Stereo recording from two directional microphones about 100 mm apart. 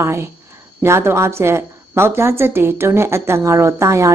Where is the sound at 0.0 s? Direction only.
25° right (ahead or behind).